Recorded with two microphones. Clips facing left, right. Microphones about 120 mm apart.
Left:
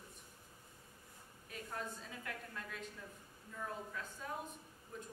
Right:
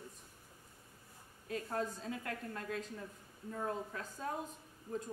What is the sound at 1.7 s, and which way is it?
A woman's voice, 35° right (ahead or behind).